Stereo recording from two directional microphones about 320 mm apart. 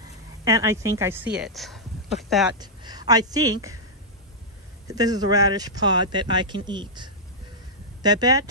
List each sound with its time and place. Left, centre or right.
0.5 s a woman's voice: centre
2.6 s speech: centre
4.8 s speech: centre